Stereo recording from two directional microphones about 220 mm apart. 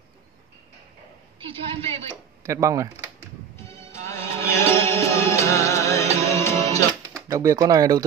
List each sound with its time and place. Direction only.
1.4 s a woman's voice: 25° right (ahead or behind)
2.4 s speech: 15° right (ahead or behind)
3.5 s music: 10° left (ahead or behind)
7.2 s speech: 15° right (ahead or behind)